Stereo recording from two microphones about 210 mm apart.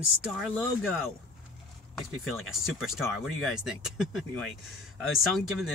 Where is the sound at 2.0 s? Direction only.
Centre (ahead or behind).